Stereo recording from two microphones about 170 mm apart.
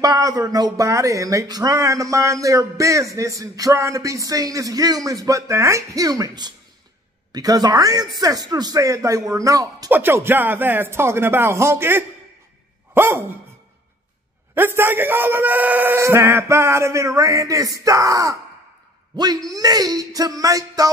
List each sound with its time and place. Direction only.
0.0 s a man's voice: 20° right (ahead or behind)
12.9 s dog: 15° right (ahead or behind)
14.5 s a man's voice: 10° right (ahead or behind)